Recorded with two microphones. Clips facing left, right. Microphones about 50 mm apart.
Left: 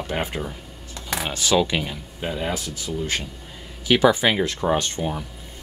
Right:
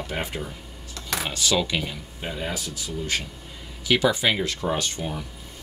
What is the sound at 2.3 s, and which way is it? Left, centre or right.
Speech, centre.